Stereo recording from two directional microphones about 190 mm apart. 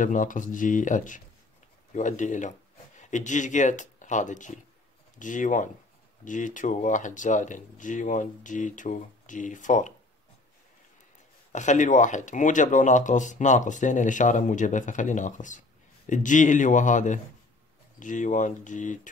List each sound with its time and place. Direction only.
0.0 s speech: 45° left (ahead or behind)
11.5 s speech: 40° left (ahead or behind)